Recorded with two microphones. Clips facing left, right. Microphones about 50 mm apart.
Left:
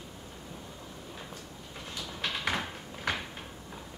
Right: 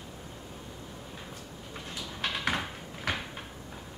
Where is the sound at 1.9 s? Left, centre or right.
Centre.